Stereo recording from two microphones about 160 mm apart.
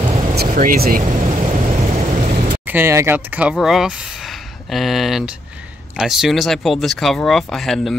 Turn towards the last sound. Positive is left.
turn(degrees=0)  # may be behind; listen again after turning